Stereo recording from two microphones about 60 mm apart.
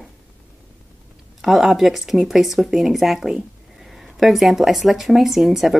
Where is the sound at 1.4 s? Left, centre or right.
Centre.